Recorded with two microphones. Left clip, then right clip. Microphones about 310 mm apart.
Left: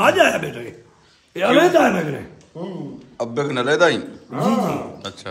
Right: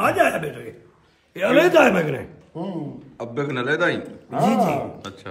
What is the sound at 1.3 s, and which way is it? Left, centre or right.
A man's voice, centre.